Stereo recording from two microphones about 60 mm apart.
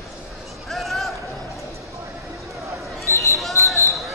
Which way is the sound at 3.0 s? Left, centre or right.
Left.